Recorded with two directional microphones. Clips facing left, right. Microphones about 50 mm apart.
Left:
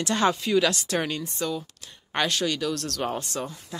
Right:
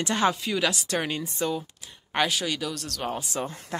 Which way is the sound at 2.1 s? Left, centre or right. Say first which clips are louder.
Even; centre.